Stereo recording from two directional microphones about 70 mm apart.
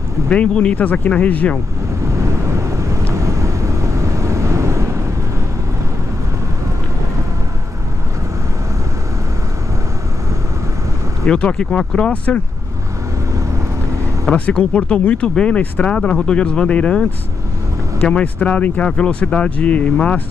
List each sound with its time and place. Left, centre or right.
0.3 s speech: centre
2.1 s vehicle: right
11.2 s speech: centre
14.3 s speech: centre
18.0 s speech: centre